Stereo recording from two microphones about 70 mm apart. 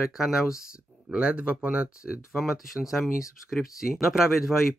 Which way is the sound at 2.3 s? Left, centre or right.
Centre.